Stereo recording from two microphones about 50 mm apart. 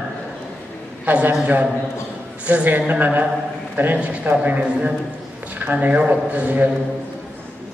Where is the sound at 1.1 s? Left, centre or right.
Right.